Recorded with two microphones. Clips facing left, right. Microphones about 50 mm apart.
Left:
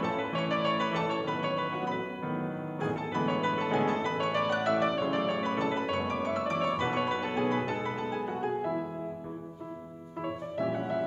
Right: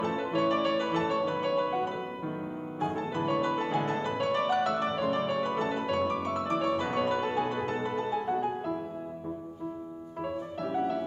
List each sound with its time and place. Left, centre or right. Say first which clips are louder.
0.0 s music: right 3 dB; left
4.2 s music: right 2 dB; left
7.4 s music: left 1 dB; left
8.1 s music: right 2 dB; centre
10.6 s music: right 1 dB; left